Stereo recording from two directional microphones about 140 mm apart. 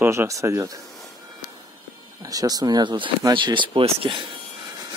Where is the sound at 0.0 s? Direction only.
15° right (ahead or behind).